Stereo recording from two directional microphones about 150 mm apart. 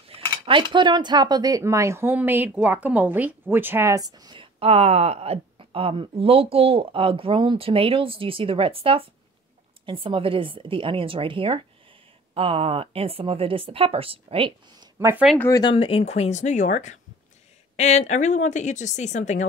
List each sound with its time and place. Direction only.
0.1 s cutlery: 35° right (ahead or behind)
15.0 s speech: 15° right (ahead or behind)
15.7 s speech: 40° left (ahead or behind)